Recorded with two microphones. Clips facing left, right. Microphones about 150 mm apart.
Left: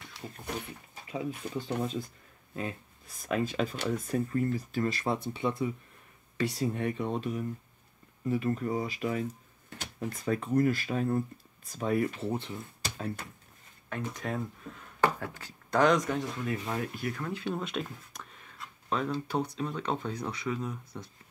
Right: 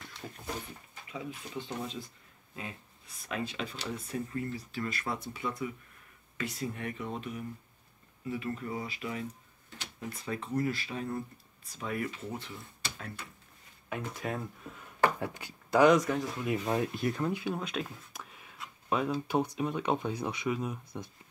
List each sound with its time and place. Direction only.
1.1 s speech: 40° left (ahead or behind)
9.7 s speech: 50° left (ahead or behind); by 12.1 s 35° left (ahead or behind)
12.3 s speech: 25° left (ahead or behind)
13.8 s speech: 5° right (ahead or behind)
15.0 s speech: 15° right (ahead or behind)
16.4 s speech: 20° right (ahead or behind)
17.3 s speech: 10° right (ahead or behind)
17.6 s speech: centre (ahead or behind)